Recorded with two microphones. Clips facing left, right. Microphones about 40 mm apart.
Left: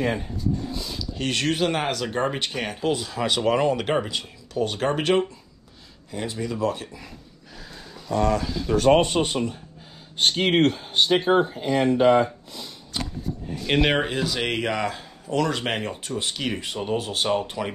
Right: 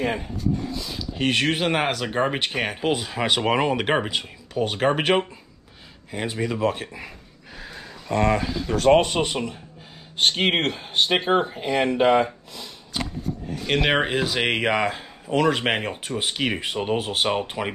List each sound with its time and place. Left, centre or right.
0.9 s speech: right
7.5 s a sound: right
8.7 s speech: right
9.1 s speech: right
13.9 s speech: right